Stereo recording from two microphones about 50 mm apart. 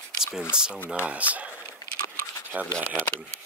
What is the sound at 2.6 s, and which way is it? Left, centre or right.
Speech, left.